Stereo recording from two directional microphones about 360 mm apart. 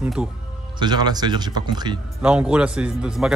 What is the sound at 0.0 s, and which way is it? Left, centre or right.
Speech, centre.